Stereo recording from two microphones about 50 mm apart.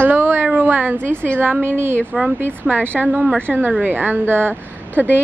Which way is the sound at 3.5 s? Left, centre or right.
Right.